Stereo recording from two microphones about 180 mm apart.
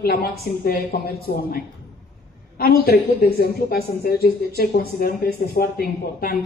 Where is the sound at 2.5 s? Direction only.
60° left (ahead or behind).